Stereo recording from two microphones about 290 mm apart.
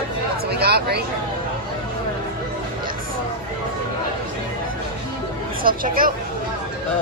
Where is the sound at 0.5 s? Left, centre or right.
Right.